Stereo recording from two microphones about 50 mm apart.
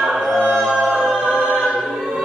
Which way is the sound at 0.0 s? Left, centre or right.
Centre.